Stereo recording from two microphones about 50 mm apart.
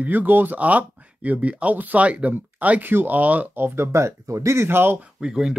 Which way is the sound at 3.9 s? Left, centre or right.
Right.